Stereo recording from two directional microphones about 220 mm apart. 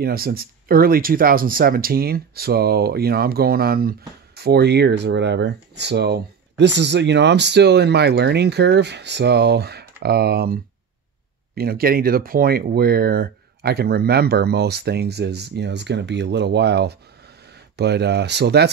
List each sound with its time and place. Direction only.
0.0 s speech: 45° right (ahead or behind)